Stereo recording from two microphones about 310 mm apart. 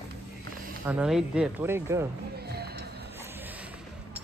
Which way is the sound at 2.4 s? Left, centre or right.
Right.